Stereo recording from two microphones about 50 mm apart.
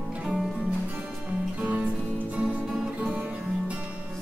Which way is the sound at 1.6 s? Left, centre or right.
Right.